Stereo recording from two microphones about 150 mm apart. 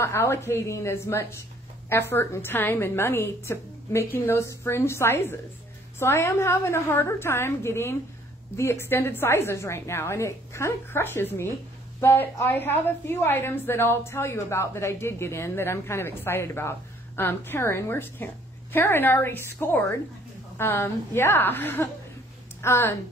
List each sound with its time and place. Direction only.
0.0 s a woman's voice: 15° left (ahead or behind)